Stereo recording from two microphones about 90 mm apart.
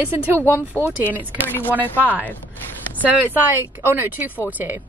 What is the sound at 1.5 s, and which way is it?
Speech, 25° left (ahead or behind).